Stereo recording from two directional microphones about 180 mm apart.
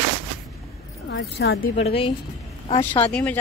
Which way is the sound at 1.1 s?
80° left.